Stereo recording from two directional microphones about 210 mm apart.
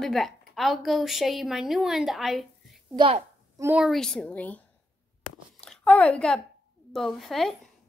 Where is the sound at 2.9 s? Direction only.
25° right (ahead or behind).